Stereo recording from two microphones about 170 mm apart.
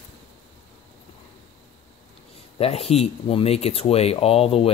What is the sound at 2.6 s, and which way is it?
Speech, 35° left (ahead or behind).